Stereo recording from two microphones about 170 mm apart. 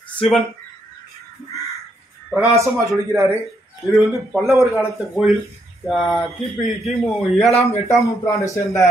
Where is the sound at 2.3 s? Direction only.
10° right (ahead or behind).